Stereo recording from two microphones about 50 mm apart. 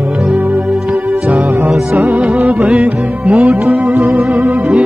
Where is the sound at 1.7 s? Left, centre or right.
Centre.